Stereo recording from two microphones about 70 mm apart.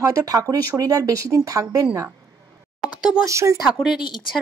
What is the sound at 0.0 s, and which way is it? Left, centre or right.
Speech, right.